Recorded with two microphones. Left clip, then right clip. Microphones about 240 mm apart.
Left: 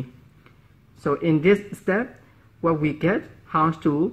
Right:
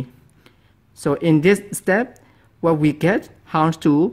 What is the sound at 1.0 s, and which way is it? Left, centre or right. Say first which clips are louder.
Speech: right 4 dB; right.